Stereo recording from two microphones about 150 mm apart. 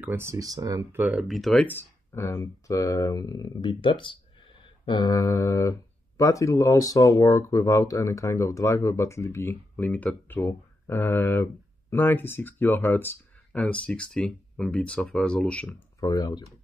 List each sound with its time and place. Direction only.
0.0 s speech: 20° right (ahead or behind)
1.0 s speech: centre (ahead or behind)
16.0 s speech: 25° left (ahead or behind)